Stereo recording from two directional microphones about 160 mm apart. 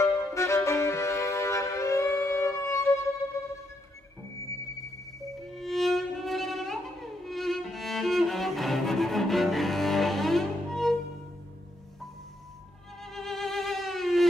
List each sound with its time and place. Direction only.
0.0 s music: 20° left (ahead or behind)
5.5 s music: centre (ahead or behind)
13.0 s music: centre (ahead or behind)